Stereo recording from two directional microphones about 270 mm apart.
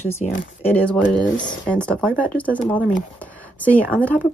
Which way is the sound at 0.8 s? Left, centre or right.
Centre.